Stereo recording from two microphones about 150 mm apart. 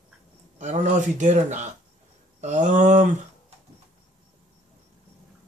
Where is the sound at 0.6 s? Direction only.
55° right (ahead or behind).